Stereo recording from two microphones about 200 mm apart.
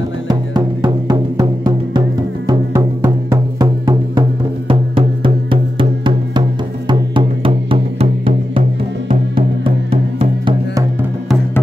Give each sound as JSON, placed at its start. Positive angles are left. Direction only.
{"t": 0.3, "sound": "music", "side_deg": -20}
{"t": 9.8, "sound": "music", "side_deg": -30}